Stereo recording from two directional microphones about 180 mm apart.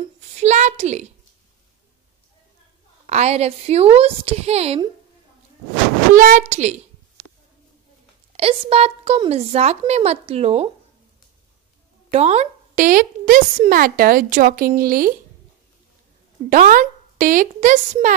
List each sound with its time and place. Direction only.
0.4 s a woman's voice: 40° right (ahead or behind)
3.1 s a woman's voice: 40° right (ahead or behind)
6.1 s a woman's voice: 45° right (ahead or behind)
8.4 s a woman's voice: 30° right (ahead or behind)
12.1 s speech: 35° right (ahead or behind)
12.8 s a woman's voice: 50° right (ahead or behind)
16.4 s a woman's voice: 45° right (ahead or behind)